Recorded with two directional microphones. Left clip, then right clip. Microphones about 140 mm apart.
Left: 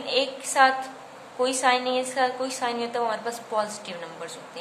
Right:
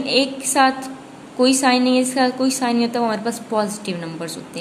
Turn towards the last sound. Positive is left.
turn(degrees=-35)  # may be behind; listen again after turning